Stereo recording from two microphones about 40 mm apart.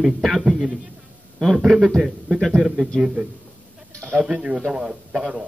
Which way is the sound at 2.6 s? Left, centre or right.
Centre.